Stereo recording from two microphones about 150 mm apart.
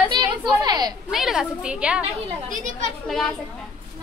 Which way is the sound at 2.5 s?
60° right (ahead or behind).